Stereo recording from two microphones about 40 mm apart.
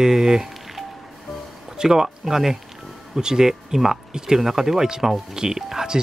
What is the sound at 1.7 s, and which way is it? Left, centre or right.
Speech, centre.